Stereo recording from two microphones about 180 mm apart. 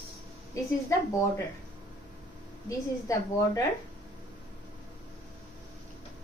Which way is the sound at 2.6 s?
20° left (ahead or behind).